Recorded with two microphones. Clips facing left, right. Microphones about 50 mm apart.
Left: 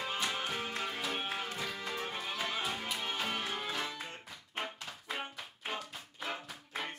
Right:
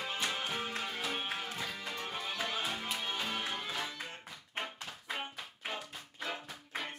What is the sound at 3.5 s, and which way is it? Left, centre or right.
Music, centre.